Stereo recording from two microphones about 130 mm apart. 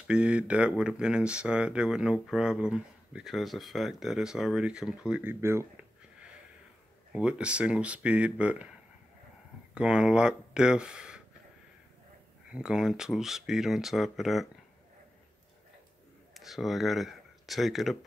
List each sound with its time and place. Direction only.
0.0 s speech: 10° right (ahead or behind)
5.3 s speech: 20° right (ahead or behind)
7.1 s speech: 10° right (ahead or behind)
9.8 s speech: 5° right (ahead or behind)
12.5 s speech: 5° right (ahead or behind)
16.3 s speech: centre (ahead or behind)